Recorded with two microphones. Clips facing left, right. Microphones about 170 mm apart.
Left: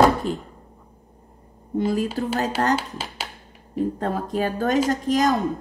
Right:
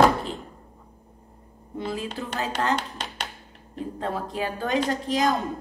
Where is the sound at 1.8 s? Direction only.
45° left (ahead or behind).